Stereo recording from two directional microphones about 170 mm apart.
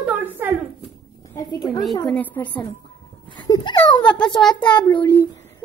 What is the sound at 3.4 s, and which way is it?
Speech, 25° left (ahead or behind).